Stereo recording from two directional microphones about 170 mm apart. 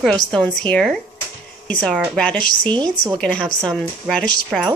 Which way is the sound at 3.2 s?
5° left (ahead or behind).